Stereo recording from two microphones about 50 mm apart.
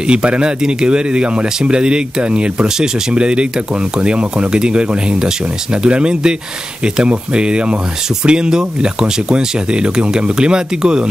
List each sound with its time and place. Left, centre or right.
0.0 s speech: centre